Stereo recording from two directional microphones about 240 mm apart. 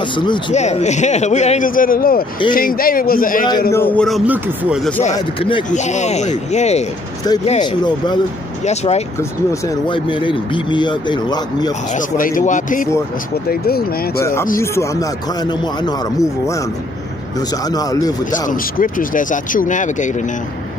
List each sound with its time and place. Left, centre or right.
0.1 s speech: centre; by 3.4 s left
3.7 s speech: centre
5.1 s speech: centre
11.9 s speech: left
14.2 s speech: centre
17.6 s speech: centre
18.5 s speech: left